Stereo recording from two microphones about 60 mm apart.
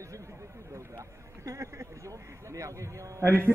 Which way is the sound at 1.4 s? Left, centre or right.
Right.